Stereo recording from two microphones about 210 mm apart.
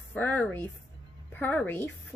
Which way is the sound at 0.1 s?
10° left (ahead or behind).